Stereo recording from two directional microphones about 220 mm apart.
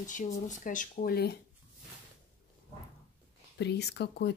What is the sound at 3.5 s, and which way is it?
Speech, 50° left (ahead or behind).